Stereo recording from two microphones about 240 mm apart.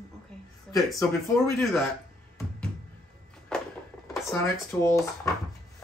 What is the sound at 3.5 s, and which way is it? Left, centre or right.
Music, centre.